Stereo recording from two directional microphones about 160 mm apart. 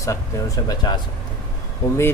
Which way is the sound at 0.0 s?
20° left (ahead or behind).